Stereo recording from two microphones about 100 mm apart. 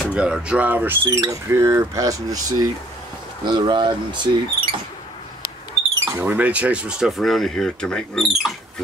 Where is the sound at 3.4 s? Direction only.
50° right (ahead or behind).